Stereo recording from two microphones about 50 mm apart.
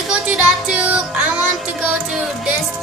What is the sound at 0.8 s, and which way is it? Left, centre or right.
Music, right.